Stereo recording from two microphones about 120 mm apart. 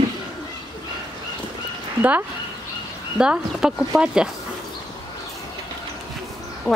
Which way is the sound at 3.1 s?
5° right (ahead or behind).